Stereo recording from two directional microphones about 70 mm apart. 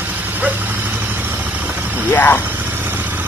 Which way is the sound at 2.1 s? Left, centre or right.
Left.